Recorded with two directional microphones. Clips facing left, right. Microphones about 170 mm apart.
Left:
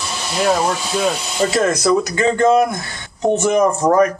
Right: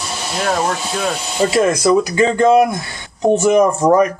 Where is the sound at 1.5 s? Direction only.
10° right (ahead or behind).